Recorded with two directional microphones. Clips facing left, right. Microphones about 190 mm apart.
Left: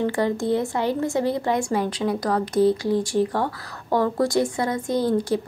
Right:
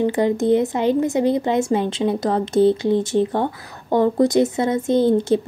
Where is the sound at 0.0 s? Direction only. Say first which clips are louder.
Right 4 dB; 20° right (ahead or behind).